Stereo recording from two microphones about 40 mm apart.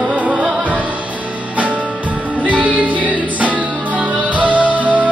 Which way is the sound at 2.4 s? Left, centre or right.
Right.